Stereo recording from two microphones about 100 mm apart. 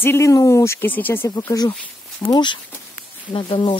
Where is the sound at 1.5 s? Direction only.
35° left (ahead or behind).